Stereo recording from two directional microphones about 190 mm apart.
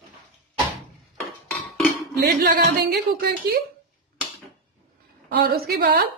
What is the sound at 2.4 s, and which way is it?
A woman's voice, 60° right (ahead or behind).